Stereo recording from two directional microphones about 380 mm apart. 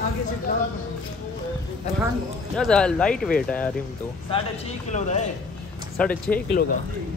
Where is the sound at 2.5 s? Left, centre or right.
Centre.